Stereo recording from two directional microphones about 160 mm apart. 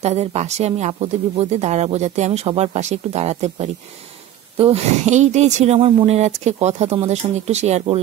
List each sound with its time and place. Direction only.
0.0 s speech: 40° right (ahead or behind)